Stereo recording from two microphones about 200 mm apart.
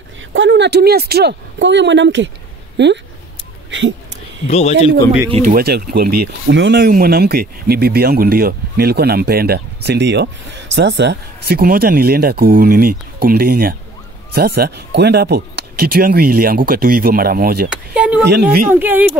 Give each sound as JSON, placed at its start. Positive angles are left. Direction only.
{"t": 0.3, "sound": "speech", "side_deg": -65}
{"t": 3.7, "sound": "speech", "side_deg": -70}
{"t": 4.5, "sound": "speech", "side_deg": 30}
{"t": 5.4, "sound": "speech", "side_deg": -45}
{"t": 17.6, "sound": "speech", "side_deg": -5}
{"t": 18.3, "sound": "speech", "side_deg": -50}
{"t": 18.7, "sound": "speech", "side_deg": -10}